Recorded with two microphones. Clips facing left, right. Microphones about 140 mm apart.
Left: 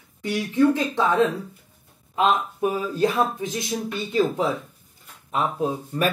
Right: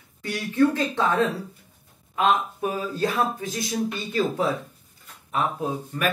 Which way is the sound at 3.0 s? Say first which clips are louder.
Left 3 dB; 20° left (ahead or behind).